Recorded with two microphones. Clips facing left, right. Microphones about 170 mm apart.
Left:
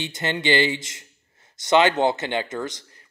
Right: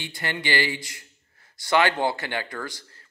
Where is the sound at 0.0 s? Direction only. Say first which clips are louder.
Left 5 dB; 20° left (ahead or behind).